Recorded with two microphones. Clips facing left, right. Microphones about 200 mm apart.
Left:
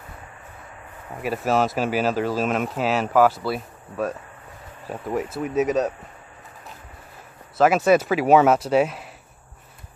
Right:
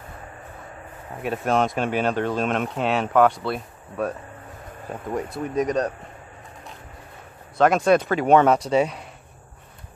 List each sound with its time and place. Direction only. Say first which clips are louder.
1.2 s speech: even; 5° left (ahead or behind)
7.5 s speech: left 1 dB; 5° left (ahead or behind)